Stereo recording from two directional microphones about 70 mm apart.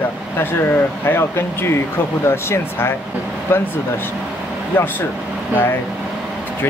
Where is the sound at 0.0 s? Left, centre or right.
Left.